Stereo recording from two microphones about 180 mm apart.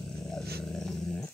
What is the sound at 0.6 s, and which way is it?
Dog, centre (ahead or behind).